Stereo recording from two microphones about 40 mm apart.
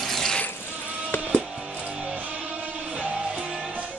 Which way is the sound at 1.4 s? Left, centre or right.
Right.